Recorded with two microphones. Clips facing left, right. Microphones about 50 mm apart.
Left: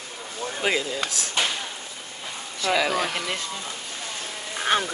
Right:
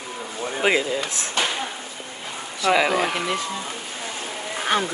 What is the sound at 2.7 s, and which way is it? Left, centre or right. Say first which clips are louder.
Speech: right 3 dB; right.